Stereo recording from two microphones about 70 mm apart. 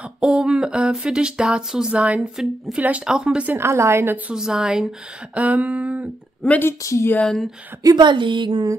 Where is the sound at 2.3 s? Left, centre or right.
Centre.